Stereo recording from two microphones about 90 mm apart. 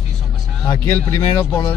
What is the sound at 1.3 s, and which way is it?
Speech, 60° left (ahead or behind).